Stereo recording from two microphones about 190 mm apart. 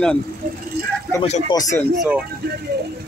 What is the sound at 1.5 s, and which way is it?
Speech, 20° left (ahead or behind).